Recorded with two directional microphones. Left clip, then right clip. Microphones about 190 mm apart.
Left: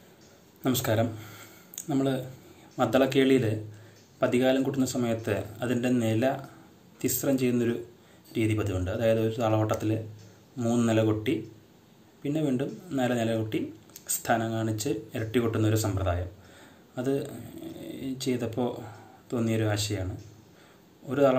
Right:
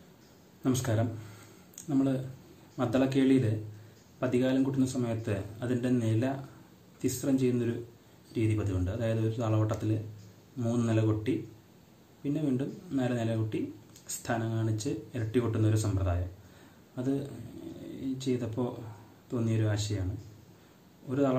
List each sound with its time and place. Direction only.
0.7 s speech: 15° right (ahead or behind)
2.8 s a man's voice: 15° right (ahead or behind)
21.1 s speech: 15° right (ahead or behind)